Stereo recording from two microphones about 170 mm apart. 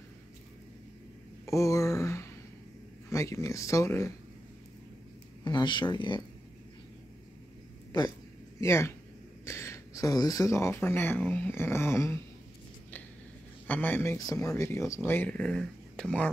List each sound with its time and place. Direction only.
1.4 s a sound: 20° left (ahead or behind)
3.1 s speech: 20° left (ahead or behind)
5.4 s speech: 25° left (ahead or behind)
8.5 s speech: 15° left (ahead or behind)
13.7 s speech: 10° left (ahead or behind)